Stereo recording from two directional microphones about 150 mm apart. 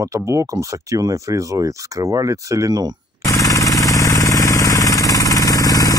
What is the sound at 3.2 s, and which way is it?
Jackhammer, 20° left (ahead or behind).